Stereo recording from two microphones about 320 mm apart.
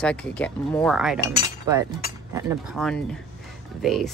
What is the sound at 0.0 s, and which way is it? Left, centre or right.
Speech, centre.